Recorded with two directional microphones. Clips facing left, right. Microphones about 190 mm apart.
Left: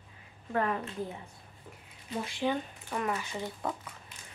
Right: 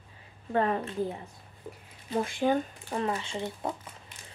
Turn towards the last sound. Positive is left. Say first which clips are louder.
# right 2 dB
turn(degrees=-20)  # may be behind; listen again after turning